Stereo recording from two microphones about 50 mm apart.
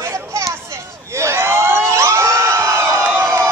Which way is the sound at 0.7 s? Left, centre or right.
Right.